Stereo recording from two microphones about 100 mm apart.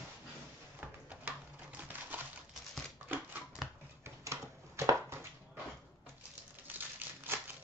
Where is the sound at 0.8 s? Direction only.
15° right (ahead or behind).